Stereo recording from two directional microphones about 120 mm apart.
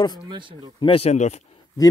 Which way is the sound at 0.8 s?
55° left (ahead or behind).